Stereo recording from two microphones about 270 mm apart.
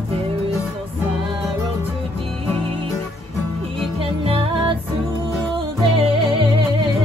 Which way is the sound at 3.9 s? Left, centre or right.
Centre.